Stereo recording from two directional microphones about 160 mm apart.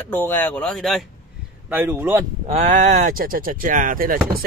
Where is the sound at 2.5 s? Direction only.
45° right (ahead or behind); by 4.4 s 60° right (ahead or behind).